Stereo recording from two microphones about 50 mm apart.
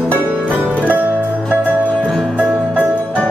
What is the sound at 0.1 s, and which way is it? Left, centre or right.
Music, right.